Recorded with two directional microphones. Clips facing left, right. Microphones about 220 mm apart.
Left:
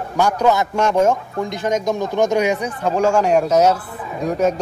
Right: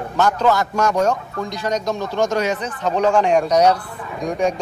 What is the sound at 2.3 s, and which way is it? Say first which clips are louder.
A man's voice: left 3 dB; 15° left (ahead or behind).